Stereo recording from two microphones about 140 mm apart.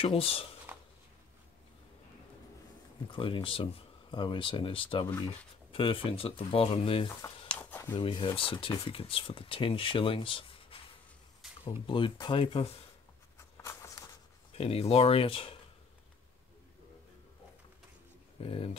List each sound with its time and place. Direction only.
0.0 s speech: 45° left (ahead or behind)
3.1 s speech: 35° left (ahead or behind)
7.4 s a sound: 10° left (ahead or behind)
7.9 s speech: 35° left (ahead or behind)
11.8 s speech: 35° left (ahead or behind)
13.4 s writing: 20° left (ahead or behind)
14.5 s speech: 45° left (ahead or behind)
18.4 s speech: 40° left (ahead or behind)